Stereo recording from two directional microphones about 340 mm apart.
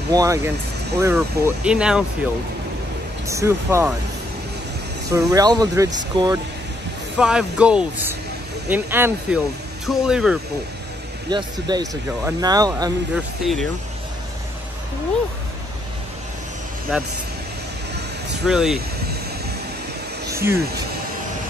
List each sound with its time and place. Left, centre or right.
0.1 s speech: centre
3.3 s speech: centre
5.1 s speech: centre
11.2 s speech: centre
18.5 s speech: centre
20.5 s speech: right